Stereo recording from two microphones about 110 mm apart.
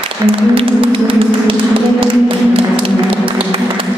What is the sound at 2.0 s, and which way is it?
Tap, 55° right (ahead or behind).